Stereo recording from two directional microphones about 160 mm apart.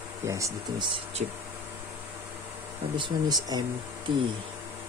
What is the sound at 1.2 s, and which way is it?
Speech, 50° right (ahead or behind).